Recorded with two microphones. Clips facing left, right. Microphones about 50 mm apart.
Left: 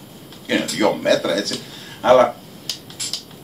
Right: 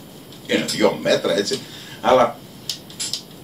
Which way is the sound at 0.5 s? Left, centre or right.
Centre.